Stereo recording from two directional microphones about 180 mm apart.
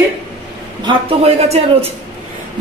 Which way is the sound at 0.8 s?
35° right (ahead or behind).